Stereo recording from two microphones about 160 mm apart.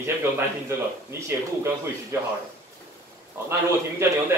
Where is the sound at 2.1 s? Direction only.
15° right (ahead or behind).